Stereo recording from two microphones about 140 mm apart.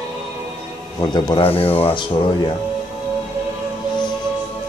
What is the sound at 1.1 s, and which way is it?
Speech, 30° left (ahead or behind).